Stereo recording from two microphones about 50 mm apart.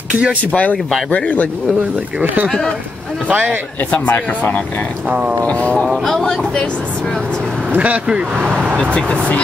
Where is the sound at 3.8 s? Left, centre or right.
Left.